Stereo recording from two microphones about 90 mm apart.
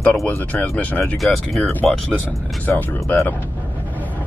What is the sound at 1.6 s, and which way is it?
Speech, 20° left (ahead or behind).